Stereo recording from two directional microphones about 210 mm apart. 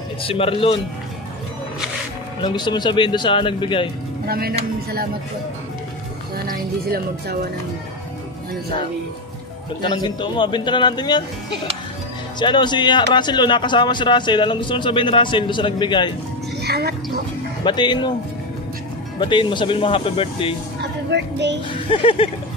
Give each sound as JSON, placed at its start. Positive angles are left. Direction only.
{"t": 0.2, "sound": "a man's voice", "side_deg": 25}
{"t": 2.4, "sound": "a man's voice", "side_deg": 20}
{"t": 4.3, "sound": "speech", "side_deg": -45}
{"t": 6.3, "sound": "speech", "side_deg": -45}
{"t": 9.8, "sound": "a man's voice", "side_deg": 20}
{"t": 12.4, "sound": "a man's voice", "side_deg": 20}
{"t": 16.6, "sound": "music", "side_deg": -50}
{"t": 17.6, "sound": "a man's voice", "side_deg": 20}
{"t": 19.1, "sound": "a man's voice", "side_deg": 20}
{"t": 20.8, "sound": "speech", "side_deg": -55}
{"t": 21.6, "sound": "a man's voice", "side_deg": 25}